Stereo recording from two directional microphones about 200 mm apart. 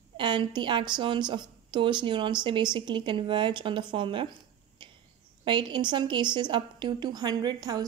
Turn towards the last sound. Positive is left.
turn(degrees=-20)  # may be behind; listen again after turning